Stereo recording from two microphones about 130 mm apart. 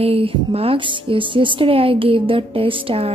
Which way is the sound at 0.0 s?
45° right (ahead or behind).